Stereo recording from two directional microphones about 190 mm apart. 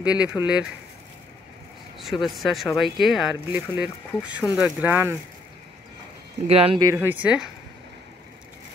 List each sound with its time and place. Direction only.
0.0 s speech: 5° right (ahead or behind)
2.0 s speech: centre (ahead or behind)
6.4 s speech: 30° right (ahead or behind)
6.8 s speech: 15° right (ahead or behind)